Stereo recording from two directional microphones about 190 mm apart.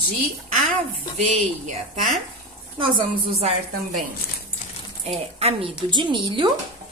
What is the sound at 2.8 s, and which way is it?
A woman's voice, 30° right (ahead or behind).